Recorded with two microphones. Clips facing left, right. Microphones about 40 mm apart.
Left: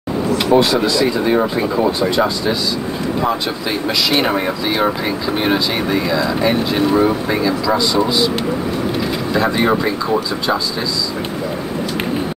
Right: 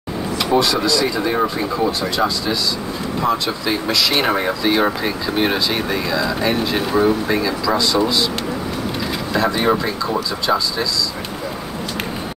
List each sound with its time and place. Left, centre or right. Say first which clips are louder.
0.6 s speech: even; left
3.2 s speech: right 1 dB; centre
9.3 s speech: left 1 dB; centre